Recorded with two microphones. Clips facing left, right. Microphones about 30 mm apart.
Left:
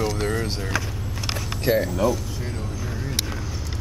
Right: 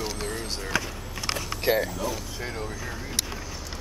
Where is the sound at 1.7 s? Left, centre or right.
Centre.